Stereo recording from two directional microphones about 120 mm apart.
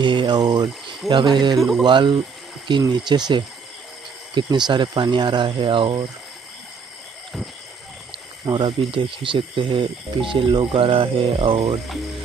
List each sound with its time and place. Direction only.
0.0 s speech: 40° right (ahead or behind)
1.6 s speech: centre (ahead or behind)
1.9 s speech: 40° right (ahead or behind)
8.6 s speech: 45° right (ahead or behind)
11.6 s speech: centre (ahead or behind)